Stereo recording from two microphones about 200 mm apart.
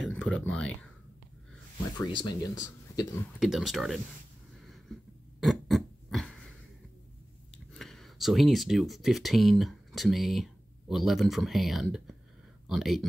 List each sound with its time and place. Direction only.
0.0 s speech: 5° left (ahead or behind)
2.0 s speech: 20° left (ahead or behind)
3.3 s speech: centre (ahead or behind)
5.4 s pig: centre (ahead or behind)
7.5 s speech: centre (ahead or behind)